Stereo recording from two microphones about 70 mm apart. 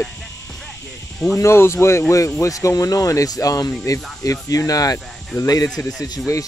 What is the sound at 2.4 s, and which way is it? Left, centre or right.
Speech, left.